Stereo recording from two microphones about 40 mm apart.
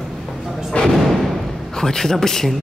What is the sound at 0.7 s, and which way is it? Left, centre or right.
Thump, left.